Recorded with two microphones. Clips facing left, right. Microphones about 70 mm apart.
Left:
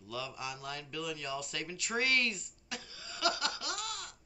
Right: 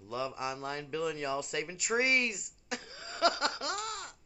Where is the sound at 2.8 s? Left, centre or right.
Right.